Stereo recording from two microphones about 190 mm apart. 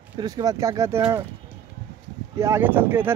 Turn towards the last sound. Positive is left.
turn(degrees=-10)  # may be behind; listen again after turning